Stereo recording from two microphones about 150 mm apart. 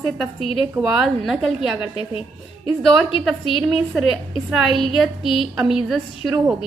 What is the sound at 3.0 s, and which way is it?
Speech, 40° left (ahead or behind).